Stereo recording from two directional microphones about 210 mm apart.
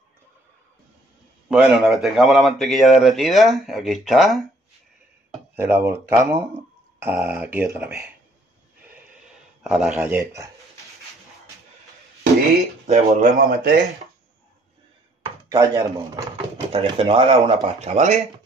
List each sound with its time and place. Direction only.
1.5 s speech: 5° right (ahead or behind)
5.6 s speech: 10° right (ahead or behind)
9.6 s speech: 5° right (ahead or behind)
12.8 s speech: 35° right (ahead or behind)
15.5 s speech: 15° right (ahead or behind); by 18.2 s 35° right (ahead or behind)